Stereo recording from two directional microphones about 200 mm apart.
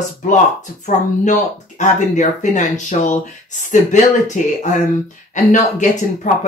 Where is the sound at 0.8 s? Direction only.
35° left (ahead or behind).